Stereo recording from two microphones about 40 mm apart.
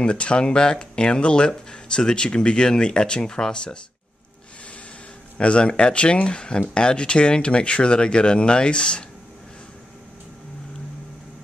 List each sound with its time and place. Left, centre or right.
0.0 s speech: left
5.4 s speech: left